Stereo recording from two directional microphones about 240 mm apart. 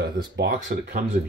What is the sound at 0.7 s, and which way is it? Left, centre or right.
Speech, right.